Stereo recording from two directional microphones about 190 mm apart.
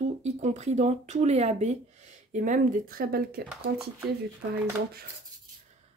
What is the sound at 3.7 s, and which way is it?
Speech, 65° right (ahead or behind).